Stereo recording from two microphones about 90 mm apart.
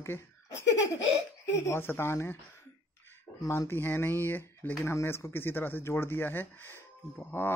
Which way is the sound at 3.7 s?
25° left (ahead or behind).